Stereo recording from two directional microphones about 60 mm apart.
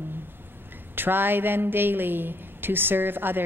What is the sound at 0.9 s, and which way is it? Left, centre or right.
Speech, right.